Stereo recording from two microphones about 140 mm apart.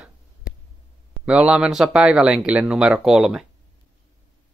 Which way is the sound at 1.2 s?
10° right (ahead or behind).